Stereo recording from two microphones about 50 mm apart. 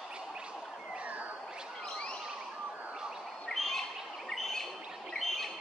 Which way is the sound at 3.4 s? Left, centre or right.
Centre.